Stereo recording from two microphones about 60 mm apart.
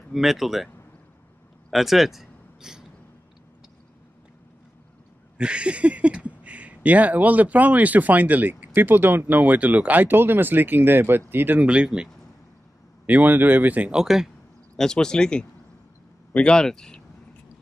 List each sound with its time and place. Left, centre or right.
0.1 s speech: centre
1.7 s a sound: centre
5.4 s speech: centre; by 11.6 s right
11.6 s speech: centre
13.0 s speech: right
13.9 s speech: centre
14.8 s speech: centre